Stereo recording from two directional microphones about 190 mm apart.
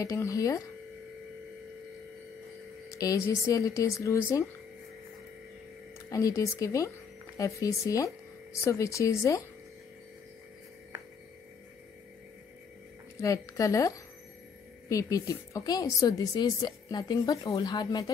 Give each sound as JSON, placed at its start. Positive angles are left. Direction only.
{"t": 0.0, "sound": "speech", "side_deg": 15}
{"t": 2.9, "sound": "speech", "side_deg": 15}
{"t": 6.0, "sound": "speech", "side_deg": 15}
{"t": 13.2, "sound": "a woman's voice", "side_deg": 15}